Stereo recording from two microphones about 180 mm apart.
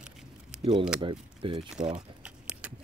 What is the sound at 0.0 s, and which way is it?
Keys jangling, 5° right (ahead or behind).